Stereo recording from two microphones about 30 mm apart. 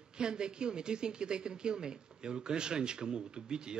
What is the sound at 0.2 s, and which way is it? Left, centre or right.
Speech, right.